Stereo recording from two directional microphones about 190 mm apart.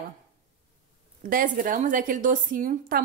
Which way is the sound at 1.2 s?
45° right (ahead or behind).